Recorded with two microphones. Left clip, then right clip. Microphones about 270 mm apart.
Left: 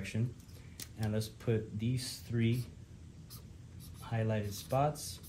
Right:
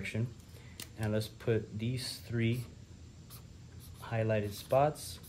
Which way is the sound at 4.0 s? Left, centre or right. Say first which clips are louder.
Right 4 dB; right.